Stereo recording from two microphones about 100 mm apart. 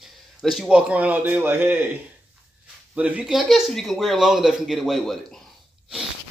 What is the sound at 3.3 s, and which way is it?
Speech, centre (ahead or behind).